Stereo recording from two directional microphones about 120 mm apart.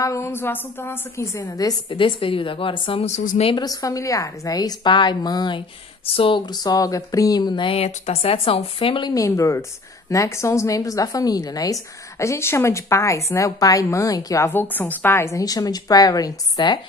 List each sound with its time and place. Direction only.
0.0 s a woman's voice: 25° left (ahead or behind)
1.4 s a woman's voice: 35° left (ahead or behind)
2.0 s speech: 45° left (ahead or behind)
3.1 s a woman's voice: 75° left (ahead or behind)
3.5 s a woman's voice: 30° left (ahead or behind)
7.7 s speech: 60° left (ahead or behind)
9.1 s a woman's voice: 25° left (ahead or behind)